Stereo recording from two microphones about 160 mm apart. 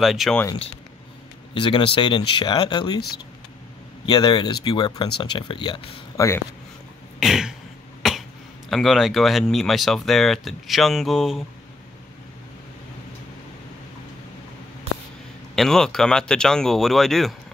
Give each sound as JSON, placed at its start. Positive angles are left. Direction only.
{"t": 0.0, "sound": "speech", "side_deg": 0}
{"t": 1.5, "sound": "speech", "side_deg": 35}
{"t": 4.0, "sound": "speech", "side_deg": 30}
{"t": 6.1, "sound": "speech", "side_deg": 15}
{"t": 7.2, "sound": "throat clearing", "side_deg": 0}
{"t": 8.0, "sound": "cough", "side_deg": 0}
{"t": 8.6, "sound": "speech", "side_deg": 0}
{"t": 15.5, "sound": "speech", "side_deg": 0}